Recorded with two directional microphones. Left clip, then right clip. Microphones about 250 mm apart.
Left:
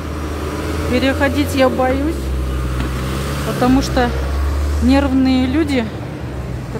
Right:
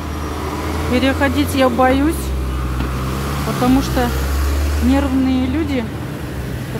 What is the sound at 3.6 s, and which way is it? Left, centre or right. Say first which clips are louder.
Speech: left 1 dB; centre.